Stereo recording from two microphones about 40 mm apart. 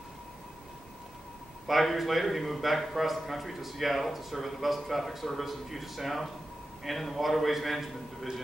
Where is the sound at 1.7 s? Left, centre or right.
Centre.